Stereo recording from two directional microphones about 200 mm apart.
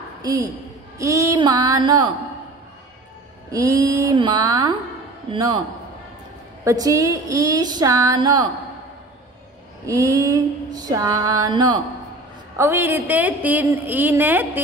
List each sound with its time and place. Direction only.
0.9 s speech: 15° right (ahead or behind)
3.6 s speech: 15° right (ahead or behind)
6.6 s a woman's voice: 15° right (ahead or behind)
9.8 s a woman's voice: 15° right (ahead or behind)